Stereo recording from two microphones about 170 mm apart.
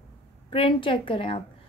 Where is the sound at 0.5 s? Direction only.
30° left (ahead or behind).